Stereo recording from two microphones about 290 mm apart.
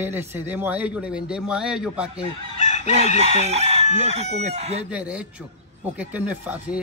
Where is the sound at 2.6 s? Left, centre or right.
Left.